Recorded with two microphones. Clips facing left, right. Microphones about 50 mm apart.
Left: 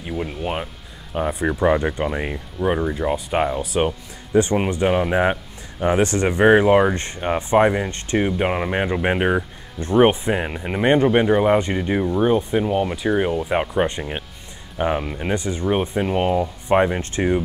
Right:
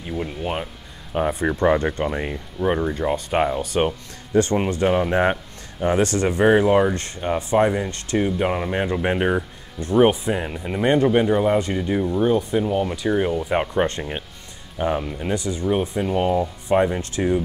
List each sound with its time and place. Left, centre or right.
0.0 s speech: centre
4.3 s speech: centre
5.8 s speech: centre
9.8 s speech: left; by 14.2 s centre
14.8 s speech: left